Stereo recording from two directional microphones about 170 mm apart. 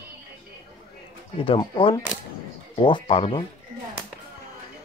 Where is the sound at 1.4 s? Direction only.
30° left (ahead or behind).